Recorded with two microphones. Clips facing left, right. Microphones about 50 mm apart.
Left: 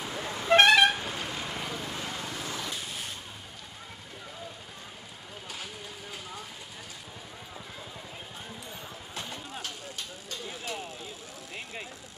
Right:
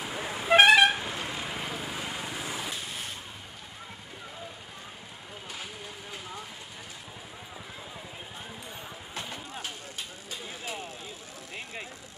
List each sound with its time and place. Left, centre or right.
0.0 s vehicle: centre
1.0 s vehicle: right
1.4 s vehicle: centre
9.1 s vehicle: centre